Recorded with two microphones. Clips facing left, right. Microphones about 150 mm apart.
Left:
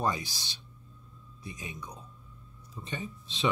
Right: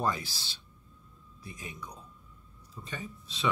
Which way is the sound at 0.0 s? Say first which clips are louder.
Left 1 dB; 15° left (ahead or behind).